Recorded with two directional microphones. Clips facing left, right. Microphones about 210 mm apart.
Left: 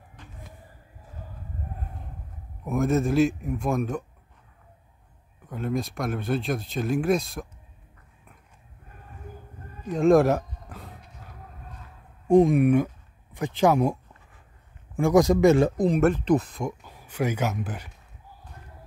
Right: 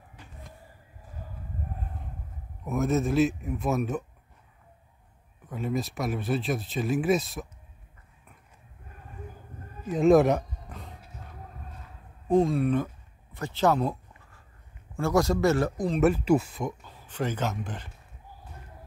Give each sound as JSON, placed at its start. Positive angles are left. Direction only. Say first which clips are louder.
{"t": 0.2, "sound": "vehicle", "louder": "left 2 dB", "side_deg": -10}
{"t": 2.6, "sound": "speech", "louder": "left 2 dB", "side_deg": 0}
{"t": 5.5, "sound": "speech", "louder": "left 2 dB", "side_deg": -5}
{"t": 9.8, "sound": "a sound", "louder": "left 1 dB", "side_deg": 0}
{"t": 12.3, "sound": "a sound", "louder": "left 5 dB", "side_deg": 15}
{"t": 15.0, "sound": "speech", "louder": "left 5 dB", "side_deg": 15}
{"t": 16.0, "sound": "speech", "louder": "right 2 dB", "side_deg": -5}
{"t": 16.8, "sound": "a man's voice", "louder": "left 4 dB", "side_deg": 10}